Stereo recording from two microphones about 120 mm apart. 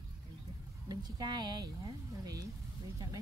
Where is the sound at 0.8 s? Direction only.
35° right (ahead or behind).